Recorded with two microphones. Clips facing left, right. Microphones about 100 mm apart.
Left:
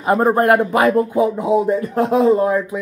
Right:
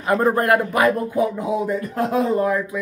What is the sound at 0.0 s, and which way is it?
Speech, 25° left (ahead or behind).